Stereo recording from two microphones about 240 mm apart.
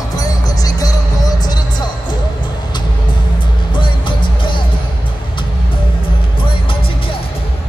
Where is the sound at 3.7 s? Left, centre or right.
Left.